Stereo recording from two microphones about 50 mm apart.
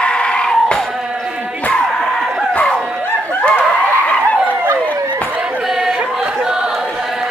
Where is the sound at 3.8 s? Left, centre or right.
Left.